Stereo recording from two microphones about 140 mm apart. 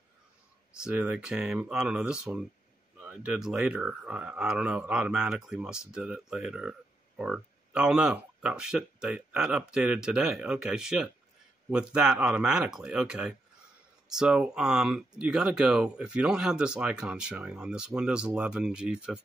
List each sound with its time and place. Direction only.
0.8 s speech: 5° right (ahead or behind)